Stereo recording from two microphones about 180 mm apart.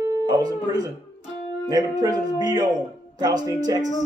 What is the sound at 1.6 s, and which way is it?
Speech, 20° right (ahead or behind).